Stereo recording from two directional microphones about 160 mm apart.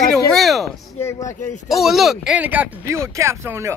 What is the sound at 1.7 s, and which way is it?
Speech, centre (ahead or behind).